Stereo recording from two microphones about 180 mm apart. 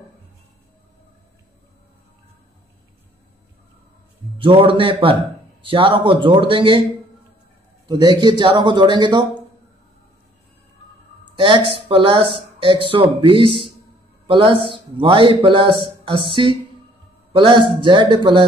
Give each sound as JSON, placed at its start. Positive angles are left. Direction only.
{"t": 4.4, "sound": "a man's voice", "side_deg": -30}
{"t": 7.9, "sound": "a man's voice", "side_deg": -25}
{"t": 11.3, "sound": "a man's voice", "side_deg": -30}